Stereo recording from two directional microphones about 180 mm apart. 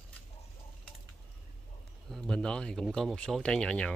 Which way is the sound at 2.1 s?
5° left (ahead or behind).